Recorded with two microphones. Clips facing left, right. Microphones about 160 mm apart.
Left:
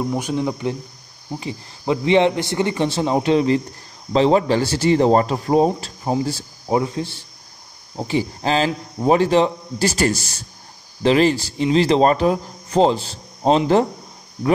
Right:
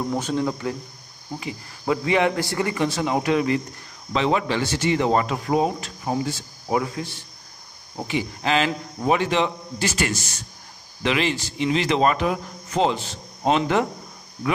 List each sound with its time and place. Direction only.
0.1 s a man's voice: 15° left (ahead or behind); by 13.8 s 35° left (ahead or behind)